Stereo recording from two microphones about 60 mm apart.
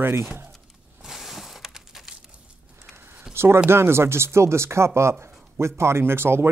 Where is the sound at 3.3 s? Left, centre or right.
Right.